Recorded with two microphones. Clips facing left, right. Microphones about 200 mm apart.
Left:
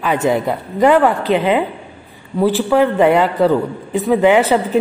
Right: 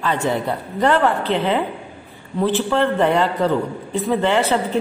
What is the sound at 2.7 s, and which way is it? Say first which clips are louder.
A man's voice: left 7 dB; 10° left (ahead or behind).